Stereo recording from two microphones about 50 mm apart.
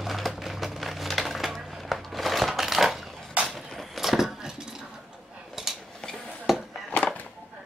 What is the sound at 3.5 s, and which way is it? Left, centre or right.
Cutlery, centre.